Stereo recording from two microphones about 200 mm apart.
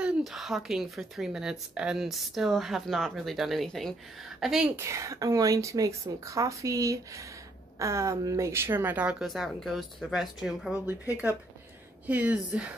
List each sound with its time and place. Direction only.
0.0 s speech: centre (ahead or behind)
4.7 s speech: 15° right (ahead or behind)